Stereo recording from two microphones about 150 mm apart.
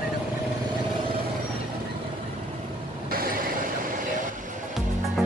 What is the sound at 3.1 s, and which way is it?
Vehicle, 75° right (ahead or behind).